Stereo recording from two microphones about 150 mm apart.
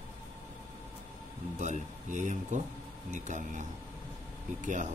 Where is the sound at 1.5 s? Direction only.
55° right (ahead or behind).